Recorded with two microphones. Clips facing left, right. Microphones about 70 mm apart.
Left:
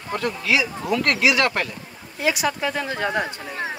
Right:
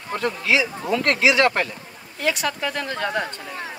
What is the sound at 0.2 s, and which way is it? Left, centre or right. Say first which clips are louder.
Speech: right 2 dB; right.